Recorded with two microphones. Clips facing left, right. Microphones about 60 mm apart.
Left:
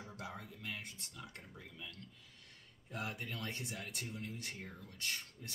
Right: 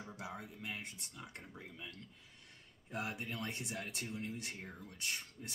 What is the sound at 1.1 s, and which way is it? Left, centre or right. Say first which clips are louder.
Speech: right 1 dB; right.